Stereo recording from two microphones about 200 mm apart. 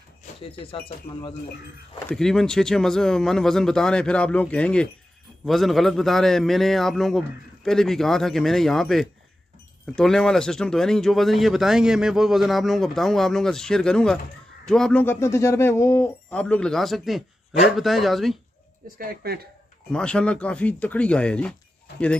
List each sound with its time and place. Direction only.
2.0 s speech: 5° left (ahead or behind)
18.9 s speech: 50° right (ahead or behind)
19.9 s speech: 5° left (ahead or behind)